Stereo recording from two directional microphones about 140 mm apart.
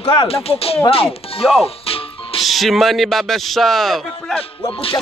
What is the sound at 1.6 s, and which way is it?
Music, 45° left (ahead or behind).